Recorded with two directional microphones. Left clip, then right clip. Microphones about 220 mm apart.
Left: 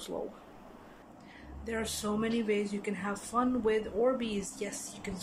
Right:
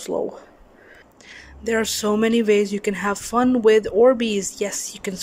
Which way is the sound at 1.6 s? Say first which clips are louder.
Right 14 dB; 45° right (ahead or behind).